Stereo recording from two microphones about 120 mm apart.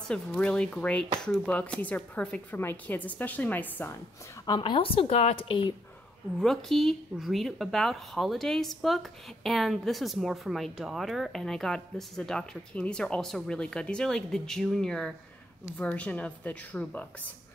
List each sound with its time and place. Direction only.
0.1 s speech: 5° left (ahead or behind)
4.5 s speech: 40° left (ahead or behind)
6.4 s speech: 5° left (ahead or behind)